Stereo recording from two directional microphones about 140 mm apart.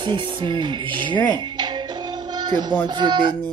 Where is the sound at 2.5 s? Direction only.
30° right (ahead or behind).